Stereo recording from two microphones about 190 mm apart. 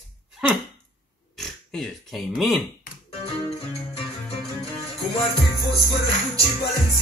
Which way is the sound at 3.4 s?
30° left (ahead or behind).